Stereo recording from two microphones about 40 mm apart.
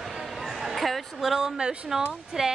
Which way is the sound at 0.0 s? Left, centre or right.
Centre.